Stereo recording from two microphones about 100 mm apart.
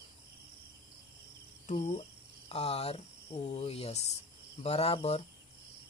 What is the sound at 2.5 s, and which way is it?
Speech, 90° left.